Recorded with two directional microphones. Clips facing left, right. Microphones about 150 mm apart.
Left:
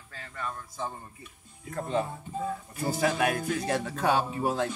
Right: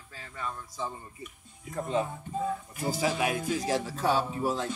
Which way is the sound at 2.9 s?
60° left (ahead or behind).